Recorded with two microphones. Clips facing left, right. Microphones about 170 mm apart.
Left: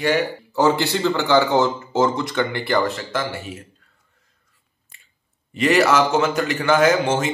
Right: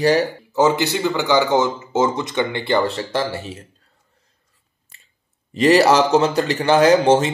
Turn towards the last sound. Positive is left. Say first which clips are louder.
# right 4 dB
turn(degrees=-35)  # may be behind; listen again after turning